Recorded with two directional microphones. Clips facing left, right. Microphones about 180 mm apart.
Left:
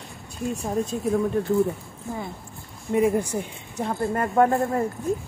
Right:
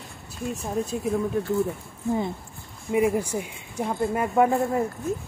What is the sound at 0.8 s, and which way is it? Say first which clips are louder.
Speech: left 2 dB; 10° right (ahead or behind).